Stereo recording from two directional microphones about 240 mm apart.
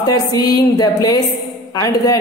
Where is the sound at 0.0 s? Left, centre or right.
Centre.